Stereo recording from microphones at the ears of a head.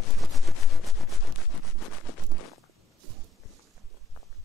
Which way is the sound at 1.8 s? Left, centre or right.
Left.